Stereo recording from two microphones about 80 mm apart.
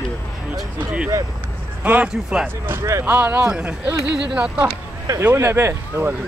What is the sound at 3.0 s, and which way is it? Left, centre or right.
Speech, right.